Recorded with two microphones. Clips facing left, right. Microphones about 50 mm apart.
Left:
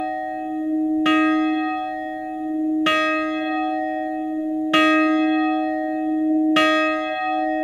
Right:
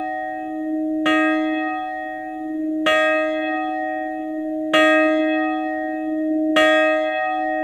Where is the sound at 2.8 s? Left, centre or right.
Centre.